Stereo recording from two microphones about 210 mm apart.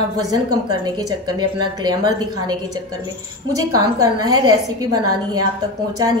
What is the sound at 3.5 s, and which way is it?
A woman's voice, 15° right (ahead or behind).